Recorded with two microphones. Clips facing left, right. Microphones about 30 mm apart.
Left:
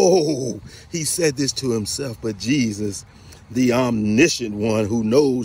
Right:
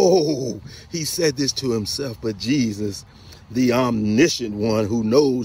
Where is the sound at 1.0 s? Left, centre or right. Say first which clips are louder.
Even; centre.